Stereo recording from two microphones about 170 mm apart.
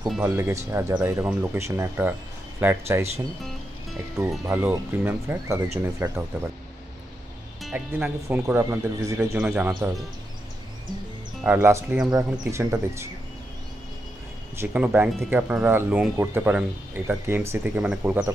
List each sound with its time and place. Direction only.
0.2 s speech: 15° right (ahead or behind)
0.9 s speech: 5° right (ahead or behind)
4.3 s speech: 10° right (ahead or behind)
7.6 s speech: 10° right (ahead or behind)
9.4 s speech: 5° right (ahead or behind)
11.4 s speech: 10° right (ahead or behind)
12.4 s speech: 15° right (ahead or behind)
14.6 s speech: 10° right (ahead or behind)